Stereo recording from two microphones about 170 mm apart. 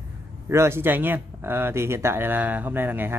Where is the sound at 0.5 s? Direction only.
15° right (ahead or behind).